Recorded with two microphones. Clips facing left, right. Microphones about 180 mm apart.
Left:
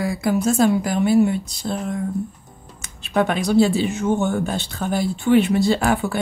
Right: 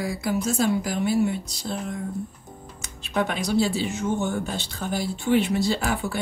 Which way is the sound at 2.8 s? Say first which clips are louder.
Left 5 dB; 55° left (ahead or behind).